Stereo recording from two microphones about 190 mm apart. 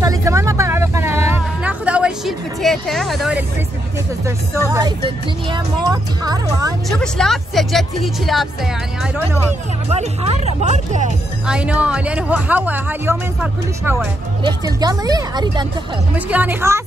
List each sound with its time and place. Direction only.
0.0 s music: 15° right (ahead or behind)
4.6 s speech: 15° right (ahead or behind)
6.9 s speech: centre (ahead or behind)
9.8 s speech: 35° right (ahead or behind)
11.4 s speech: 5° right (ahead or behind); by 15.6 s 20° right (ahead or behind)
16.3 s speech: 10° right (ahead or behind)